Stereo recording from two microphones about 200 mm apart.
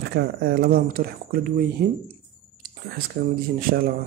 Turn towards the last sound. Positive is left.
turn(degrees=-45)  # may be behind; listen again after turning